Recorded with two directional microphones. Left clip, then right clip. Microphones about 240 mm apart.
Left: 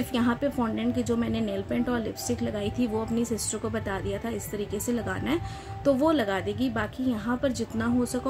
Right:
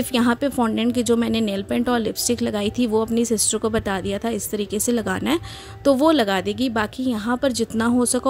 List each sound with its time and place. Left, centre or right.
0.1 s a woman's voice: right